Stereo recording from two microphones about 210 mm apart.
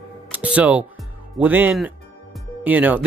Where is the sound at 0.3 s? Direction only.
5° right (ahead or behind).